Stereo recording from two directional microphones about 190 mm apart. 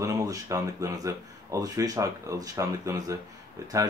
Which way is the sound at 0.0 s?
20° right (ahead or behind).